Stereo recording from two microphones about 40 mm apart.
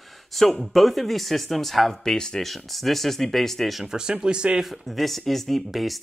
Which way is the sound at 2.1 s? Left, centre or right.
Centre.